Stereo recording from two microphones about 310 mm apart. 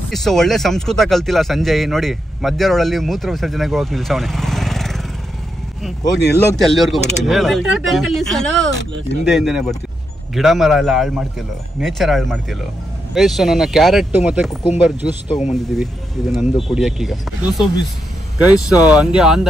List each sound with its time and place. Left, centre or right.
0.1 s speech: centre
6.5 s speech: centre
15.2 s speech: left
15.5 s speech: centre